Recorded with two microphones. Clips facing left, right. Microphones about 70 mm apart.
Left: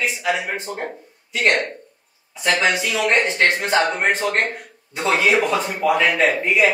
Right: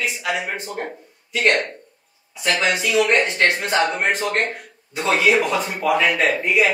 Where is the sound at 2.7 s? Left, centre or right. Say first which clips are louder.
Right 2 dB; centre.